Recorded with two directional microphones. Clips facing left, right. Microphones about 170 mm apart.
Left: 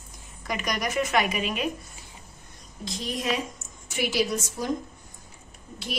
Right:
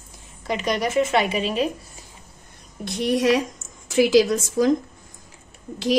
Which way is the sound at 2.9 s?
65° right (ahead or behind).